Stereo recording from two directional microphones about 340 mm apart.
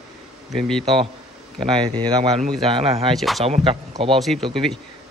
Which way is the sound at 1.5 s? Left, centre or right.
Centre.